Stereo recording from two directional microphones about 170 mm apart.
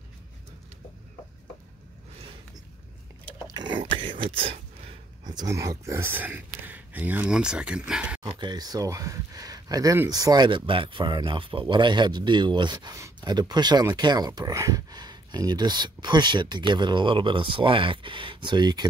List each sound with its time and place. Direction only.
3.4 s a sound: 25° right (ahead or behind)
5.3 s speech: 20° right (ahead or behind); by 8.2 s 5° right (ahead or behind)
8.2 s speech: 25° right (ahead or behind)